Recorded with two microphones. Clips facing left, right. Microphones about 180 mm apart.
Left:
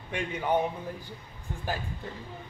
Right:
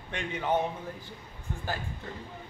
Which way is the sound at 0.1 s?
10° left (ahead or behind).